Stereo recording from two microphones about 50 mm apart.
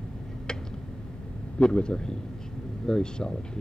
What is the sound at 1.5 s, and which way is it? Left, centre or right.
Speech, centre.